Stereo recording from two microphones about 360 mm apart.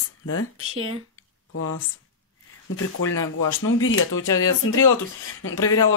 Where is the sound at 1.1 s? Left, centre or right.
Left.